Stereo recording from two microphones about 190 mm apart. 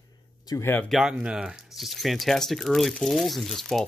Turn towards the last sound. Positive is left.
turn(degrees=0)  # may be behind; listen again after turning